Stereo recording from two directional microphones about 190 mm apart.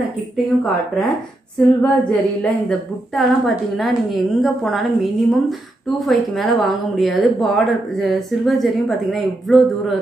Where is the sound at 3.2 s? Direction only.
Centre (ahead or behind).